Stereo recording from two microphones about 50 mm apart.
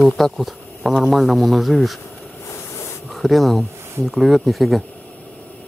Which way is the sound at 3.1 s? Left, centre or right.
Centre.